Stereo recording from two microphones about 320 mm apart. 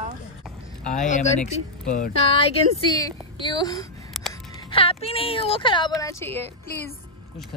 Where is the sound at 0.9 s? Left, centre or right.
Left.